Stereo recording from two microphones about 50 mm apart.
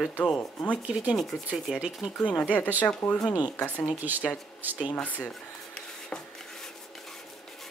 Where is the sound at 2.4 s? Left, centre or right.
Left.